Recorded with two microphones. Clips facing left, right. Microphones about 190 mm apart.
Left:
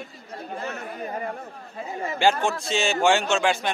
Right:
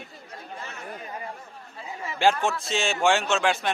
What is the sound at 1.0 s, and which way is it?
Chatter, 45° left (ahead or behind).